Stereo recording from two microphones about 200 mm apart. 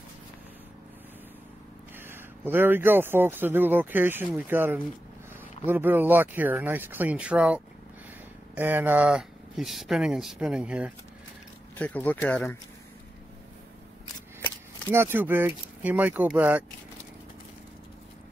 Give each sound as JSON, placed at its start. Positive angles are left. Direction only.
{"t": 2.0, "sound": "speech", "side_deg": -10}
{"t": 11.7, "sound": "speech", "side_deg": 10}
{"t": 14.9, "sound": "speech", "side_deg": -10}